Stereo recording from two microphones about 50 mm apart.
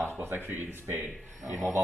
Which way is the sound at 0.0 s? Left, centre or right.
Right.